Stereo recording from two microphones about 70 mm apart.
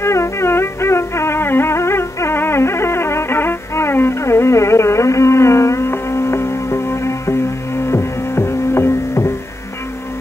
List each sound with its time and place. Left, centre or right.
0.0 s music: left